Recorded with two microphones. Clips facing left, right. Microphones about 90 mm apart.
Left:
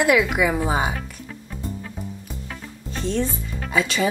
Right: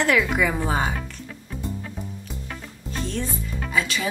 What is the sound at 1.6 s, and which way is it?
Music, 5° left (ahead or behind).